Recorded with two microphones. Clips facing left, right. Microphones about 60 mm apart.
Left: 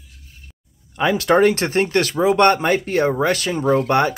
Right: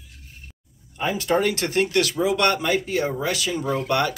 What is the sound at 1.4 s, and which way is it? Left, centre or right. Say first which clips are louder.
Speech: left 4 dB; left.